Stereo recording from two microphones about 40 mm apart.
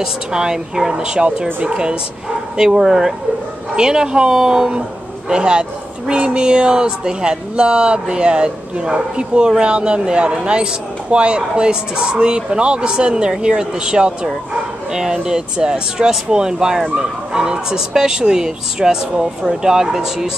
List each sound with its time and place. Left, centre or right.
0.3 s speech: centre